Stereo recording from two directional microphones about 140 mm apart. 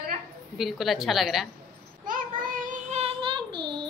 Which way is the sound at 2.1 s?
70° right (ahead or behind).